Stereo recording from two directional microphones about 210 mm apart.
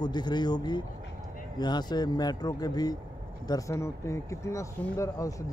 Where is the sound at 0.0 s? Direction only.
20° left (ahead or behind).